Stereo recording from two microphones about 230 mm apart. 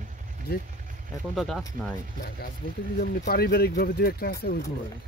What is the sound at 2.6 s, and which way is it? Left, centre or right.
Speech, left.